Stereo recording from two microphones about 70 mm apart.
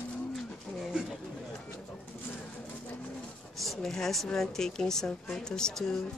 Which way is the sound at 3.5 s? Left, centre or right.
Centre.